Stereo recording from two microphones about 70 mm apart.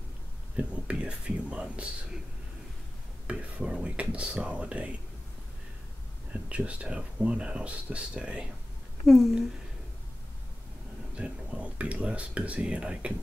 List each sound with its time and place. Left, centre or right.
0.6 s speech: centre
3.3 s speech: centre
6.3 s speech: centre
9.0 s a woman's voice: centre
11.1 s speech: centre